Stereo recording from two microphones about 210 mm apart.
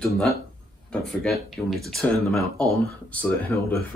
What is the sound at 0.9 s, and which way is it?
Speech, centre (ahead or behind).